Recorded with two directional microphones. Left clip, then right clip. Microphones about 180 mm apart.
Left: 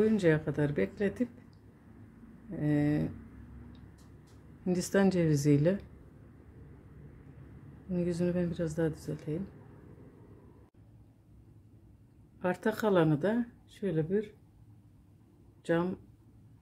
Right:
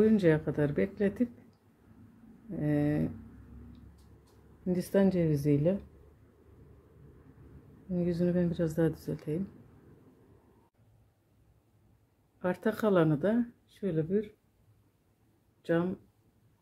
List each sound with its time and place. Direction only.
0.0 s speech: 10° right (ahead or behind)
2.5 s speech: 10° right (ahead or behind)
4.6 s speech: 5° left (ahead or behind)
7.9 s speech: 5° right (ahead or behind); by 9.4 s 20° right (ahead or behind)
12.4 s speech: centre (ahead or behind)
15.6 s speech: centre (ahead or behind)